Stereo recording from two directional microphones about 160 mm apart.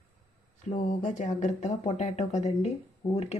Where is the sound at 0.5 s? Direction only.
50° left (ahead or behind).